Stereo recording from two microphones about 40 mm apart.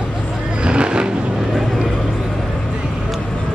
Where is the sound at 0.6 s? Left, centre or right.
Right.